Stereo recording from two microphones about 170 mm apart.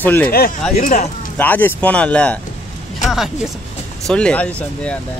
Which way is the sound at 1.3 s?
10° left (ahead or behind).